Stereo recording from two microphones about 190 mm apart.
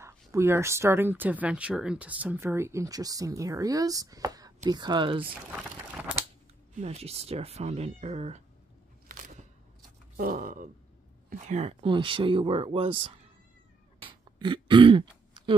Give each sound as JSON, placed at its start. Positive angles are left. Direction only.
{"t": 0.0, "sound": "speech", "side_deg": -15}
{"t": 6.7, "sound": "speech", "side_deg": -35}
{"t": 10.1, "sound": "speech", "side_deg": -50}
{"t": 14.0, "sound": "throat clearing", "side_deg": -25}